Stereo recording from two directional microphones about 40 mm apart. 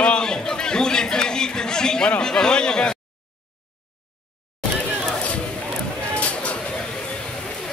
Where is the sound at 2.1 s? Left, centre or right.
Left.